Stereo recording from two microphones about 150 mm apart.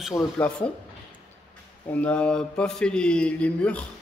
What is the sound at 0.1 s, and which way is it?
Mantra, 15° left (ahead or behind).